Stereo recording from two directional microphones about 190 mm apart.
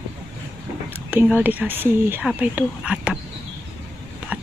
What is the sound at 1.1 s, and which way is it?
Speech, 10° right (ahead or behind).